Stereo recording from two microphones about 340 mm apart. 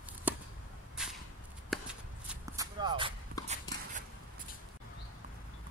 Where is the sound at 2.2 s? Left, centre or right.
Centre.